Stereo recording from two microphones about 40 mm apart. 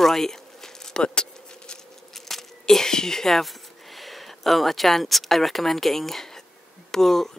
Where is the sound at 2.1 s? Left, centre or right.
Centre.